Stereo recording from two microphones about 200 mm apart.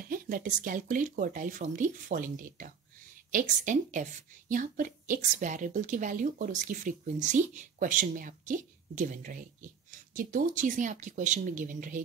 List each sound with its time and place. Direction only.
0.0 s a woman's voice: 45° right (ahead or behind)